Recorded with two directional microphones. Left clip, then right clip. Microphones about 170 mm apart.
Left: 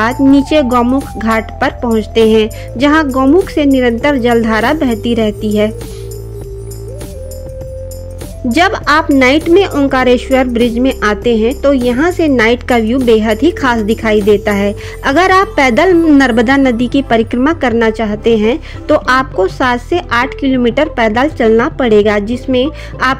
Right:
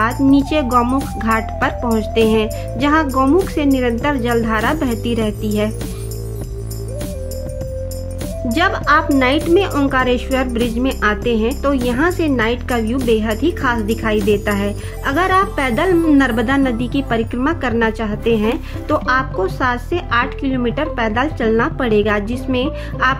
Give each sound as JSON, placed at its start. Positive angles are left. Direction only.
{"t": 0.0, "sound": "speech", "side_deg": 40}
{"t": 0.7, "sound": "speech", "side_deg": 25}
{"t": 1.1, "sound": "speech", "side_deg": 35}
{"t": 3.1, "sound": "speech", "side_deg": 25}
{"t": 3.5, "sound": "speech", "side_deg": 35}
{"t": 8.5, "sound": "speech", "side_deg": 40}
{"t": 9.5, "sound": "speech", "side_deg": 30}